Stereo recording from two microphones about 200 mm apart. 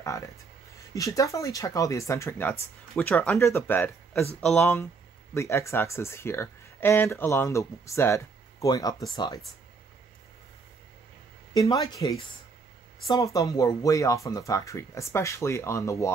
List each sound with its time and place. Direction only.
0.9 s speech: 15° left (ahead or behind)
11.7 s speech: 15° left (ahead or behind)